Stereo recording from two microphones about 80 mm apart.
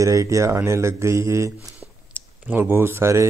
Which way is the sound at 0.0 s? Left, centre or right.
Right.